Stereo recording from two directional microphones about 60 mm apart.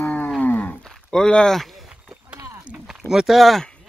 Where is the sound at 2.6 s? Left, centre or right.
Centre.